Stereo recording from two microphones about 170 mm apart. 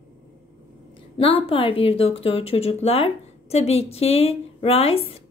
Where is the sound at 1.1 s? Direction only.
35° left (ahead or behind).